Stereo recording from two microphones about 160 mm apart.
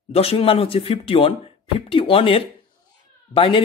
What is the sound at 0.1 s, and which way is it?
Speech, 35° left (ahead or behind).